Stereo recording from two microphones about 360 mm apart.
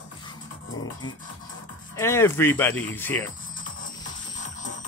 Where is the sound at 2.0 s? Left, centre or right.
Centre.